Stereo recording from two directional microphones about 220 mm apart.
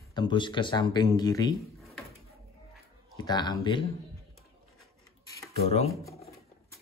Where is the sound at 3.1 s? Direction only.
20° left (ahead or behind).